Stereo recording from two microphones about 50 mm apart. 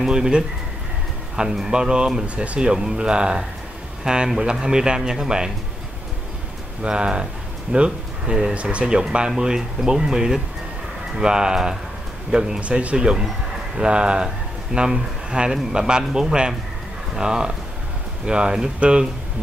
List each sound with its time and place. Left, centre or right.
0.0 s speech: centre
6.8 s speech: centre
12.5 s speech: right